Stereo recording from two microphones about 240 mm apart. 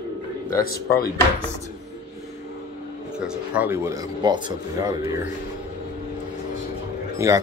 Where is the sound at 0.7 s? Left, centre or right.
Left.